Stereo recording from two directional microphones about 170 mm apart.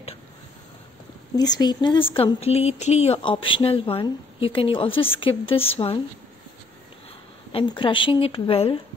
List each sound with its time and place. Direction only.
1.3 s speech: 25° left (ahead or behind)
7.5 s speech: 30° left (ahead or behind)